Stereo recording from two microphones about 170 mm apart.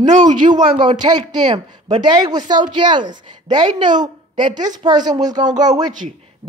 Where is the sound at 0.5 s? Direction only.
25° right (ahead or behind).